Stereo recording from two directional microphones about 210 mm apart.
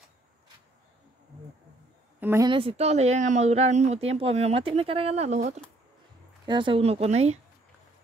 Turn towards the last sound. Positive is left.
turn(degrees=-30)  # may be behind; listen again after turning